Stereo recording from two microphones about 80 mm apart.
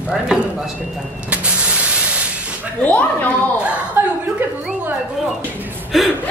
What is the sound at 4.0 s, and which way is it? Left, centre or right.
Speech, right.